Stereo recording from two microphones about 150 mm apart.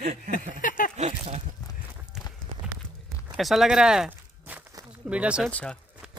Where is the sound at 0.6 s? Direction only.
65° left (ahead or behind).